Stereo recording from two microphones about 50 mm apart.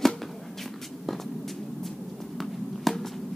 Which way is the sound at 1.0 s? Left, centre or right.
Centre.